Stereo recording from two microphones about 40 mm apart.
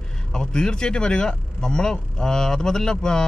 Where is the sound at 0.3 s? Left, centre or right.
Centre.